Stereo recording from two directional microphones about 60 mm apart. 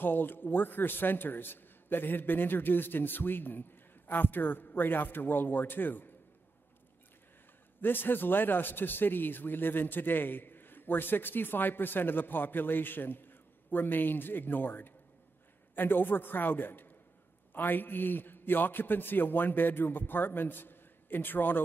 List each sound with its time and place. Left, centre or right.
0.0 s a man's voice: left
7.8 s a man's voice: left